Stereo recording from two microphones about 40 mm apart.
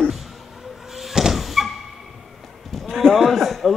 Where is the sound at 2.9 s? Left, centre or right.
Centre.